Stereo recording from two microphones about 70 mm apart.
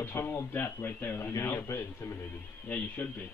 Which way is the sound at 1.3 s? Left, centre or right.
Left.